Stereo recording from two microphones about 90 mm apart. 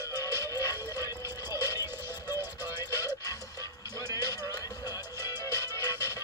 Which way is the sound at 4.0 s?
45° left (ahead or behind).